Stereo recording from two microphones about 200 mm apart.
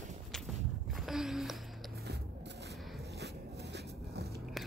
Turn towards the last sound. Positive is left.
turn(degrees=-50)  # may be behind; listen again after turning